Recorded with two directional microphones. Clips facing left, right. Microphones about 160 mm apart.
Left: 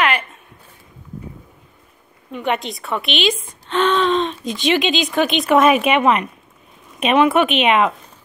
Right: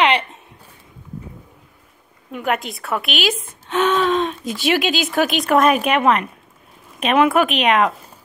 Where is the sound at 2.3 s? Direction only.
5° right (ahead or behind).